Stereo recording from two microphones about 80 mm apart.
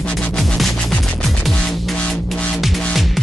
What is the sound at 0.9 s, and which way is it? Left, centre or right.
Music, centre.